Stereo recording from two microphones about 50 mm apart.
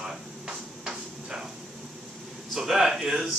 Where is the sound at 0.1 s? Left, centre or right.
Centre.